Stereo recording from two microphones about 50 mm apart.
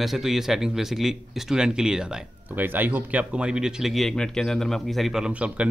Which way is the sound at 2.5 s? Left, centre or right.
Right.